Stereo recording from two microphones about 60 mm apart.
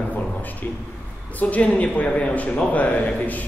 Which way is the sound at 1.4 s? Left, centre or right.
Left.